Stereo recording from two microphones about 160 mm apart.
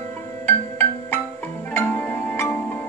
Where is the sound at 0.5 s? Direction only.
15° left (ahead or behind).